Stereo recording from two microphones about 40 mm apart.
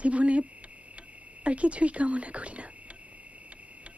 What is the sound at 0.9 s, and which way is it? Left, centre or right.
Speech, right.